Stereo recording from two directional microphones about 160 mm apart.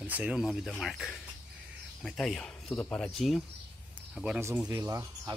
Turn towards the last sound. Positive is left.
turn(degrees=-20)  # may be behind; listen again after turning